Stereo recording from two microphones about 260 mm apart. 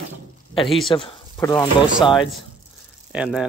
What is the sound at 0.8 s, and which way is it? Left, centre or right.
Speech, centre.